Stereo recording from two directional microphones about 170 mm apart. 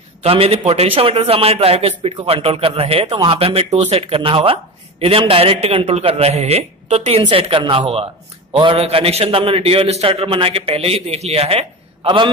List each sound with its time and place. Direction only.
0.2 s a man's voice: 35° right (ahead or behind)